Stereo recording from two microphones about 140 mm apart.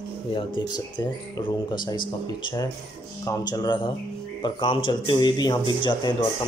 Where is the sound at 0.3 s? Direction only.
35° left (ahead or behind).